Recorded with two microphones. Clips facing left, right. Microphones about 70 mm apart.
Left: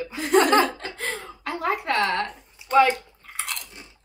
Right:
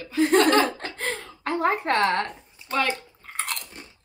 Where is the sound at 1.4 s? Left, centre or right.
Right.